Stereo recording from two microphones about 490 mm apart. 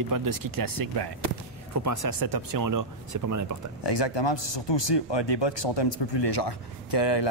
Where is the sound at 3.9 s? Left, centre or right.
Left.